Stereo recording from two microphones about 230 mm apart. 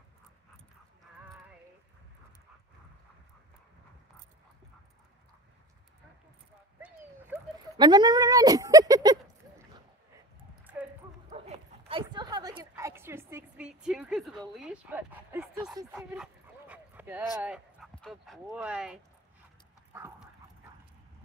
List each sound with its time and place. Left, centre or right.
7.7 s speech: centre
11.2 s bow-wow: right; by 14.4 s centre
14.6 s speech: centre
19.9 s dog: centre